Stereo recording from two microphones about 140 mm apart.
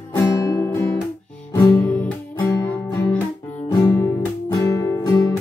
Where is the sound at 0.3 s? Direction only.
20° left (ahead or behind).